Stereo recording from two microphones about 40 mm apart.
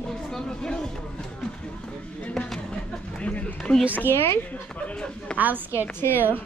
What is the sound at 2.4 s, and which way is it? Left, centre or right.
Speech, centre.